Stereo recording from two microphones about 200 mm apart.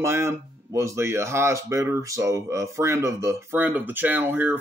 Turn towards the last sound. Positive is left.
turn(degrees=-10)  # may be behind; listen again after turning